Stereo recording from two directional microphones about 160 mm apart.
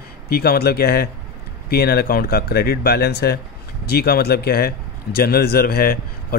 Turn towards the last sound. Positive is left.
turn(degrees=70)  # may be behind; listen again after turning